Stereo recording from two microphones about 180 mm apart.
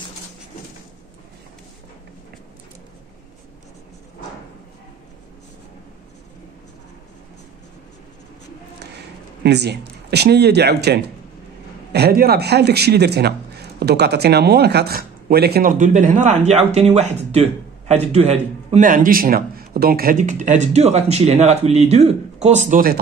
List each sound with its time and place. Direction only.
8.9 s speech: 70° right (ahead or behind)
15.8 s speech: 45° right (ahead or behind)